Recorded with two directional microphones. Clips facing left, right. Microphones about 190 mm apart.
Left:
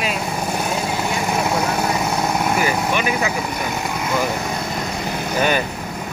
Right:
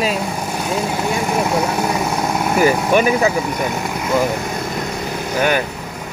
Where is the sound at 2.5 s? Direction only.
40° right (ahead or behind).